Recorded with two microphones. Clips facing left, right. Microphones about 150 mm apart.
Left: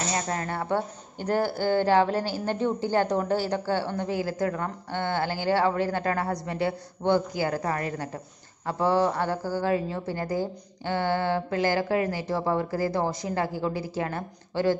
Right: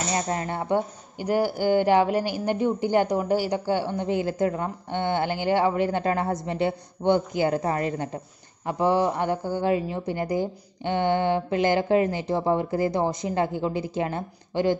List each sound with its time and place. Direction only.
0.1 s a woman's voice: 20° right (ahead or behind)